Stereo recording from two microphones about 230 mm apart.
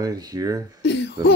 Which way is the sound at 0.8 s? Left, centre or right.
Left.